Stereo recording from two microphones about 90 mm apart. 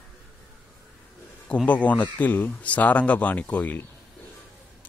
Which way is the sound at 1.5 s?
15° left (ahead or behind).